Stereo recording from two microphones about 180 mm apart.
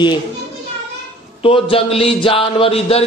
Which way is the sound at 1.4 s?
30° left (ahead or behind).